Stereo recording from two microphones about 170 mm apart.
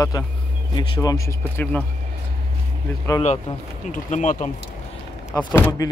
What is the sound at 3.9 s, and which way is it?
Speech, 45° left (ahead or behind).